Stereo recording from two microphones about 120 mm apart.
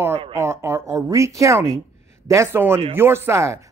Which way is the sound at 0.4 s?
25° right (ahead or behind).